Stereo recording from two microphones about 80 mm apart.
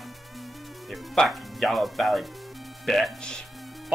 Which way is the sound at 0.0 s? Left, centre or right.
Centre.